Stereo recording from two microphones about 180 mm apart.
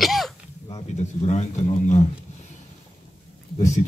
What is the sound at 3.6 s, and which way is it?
Speech, 40° left (ahead or behind).